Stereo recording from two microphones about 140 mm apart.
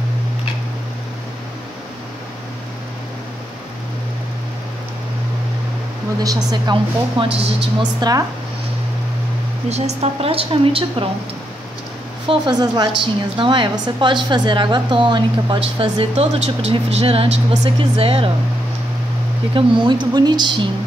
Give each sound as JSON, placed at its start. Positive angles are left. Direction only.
{"t": 6.2, "sound": "a woman's voice", "side_deg": -35}
{"t": 8.0, "sound": "speech", "side_deg": -25}
{"t": 9.7, "sound": "a woman's voice", "side_deg": -50}
{"t": 12.3, "sound": "a woman's voice", "side_deg": -30}
{"t": 19.5, "sound": "a woman's voice", "side_deg": -35}